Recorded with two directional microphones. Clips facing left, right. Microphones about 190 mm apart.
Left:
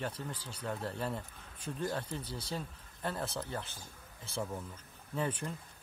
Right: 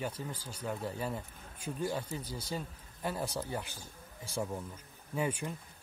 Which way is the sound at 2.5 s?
5° right (ahead or behind).